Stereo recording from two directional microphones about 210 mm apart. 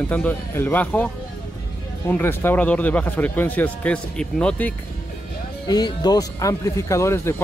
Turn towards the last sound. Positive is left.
turn(degrees=15)  # may be behind; listen again after turning